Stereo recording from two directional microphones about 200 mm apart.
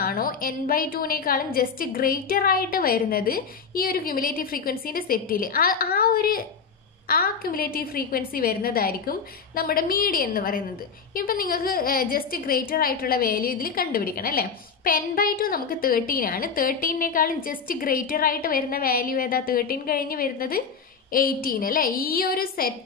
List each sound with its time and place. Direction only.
0.0 s a woman's voice: 45° left (ahead or behind)